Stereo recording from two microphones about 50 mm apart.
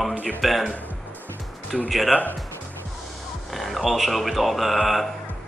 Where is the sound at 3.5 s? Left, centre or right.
Centre.